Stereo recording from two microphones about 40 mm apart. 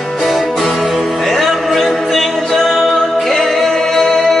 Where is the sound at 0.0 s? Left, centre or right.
Centre.